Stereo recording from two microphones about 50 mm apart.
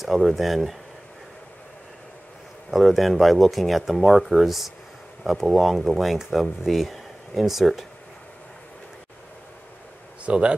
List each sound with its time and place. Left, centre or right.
0.0 s speech: centre
2.7 s speech: centre
10.2 s speech: right